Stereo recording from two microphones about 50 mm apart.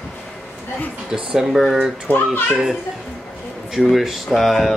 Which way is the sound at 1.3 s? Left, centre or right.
Centre.